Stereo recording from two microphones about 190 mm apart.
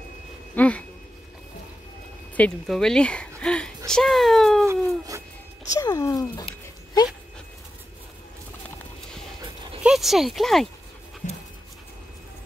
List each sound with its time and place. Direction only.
0.6 s speech: 5° left (ahead or behind)
2.3 s speech: 5° left (ahead or behind)
4.6 s a sound: 15° right (ahead or behind)
5.8 s speech: 15° left (ahead or behind)
9.8 s speech: centre (ahead or behind)
11.2 s pant: 40° left (ahead or behind)